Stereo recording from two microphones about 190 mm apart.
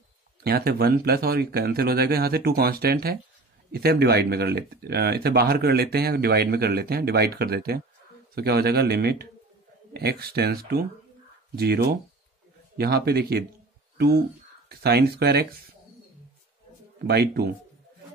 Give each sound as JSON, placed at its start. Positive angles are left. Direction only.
{"t": 0.4, "sound": "speech", "side_deg": -55}
{"t": 17.0, "sound": "speech", "side_deg": -60}